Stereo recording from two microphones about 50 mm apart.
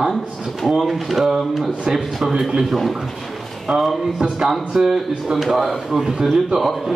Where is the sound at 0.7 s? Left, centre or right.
Centre.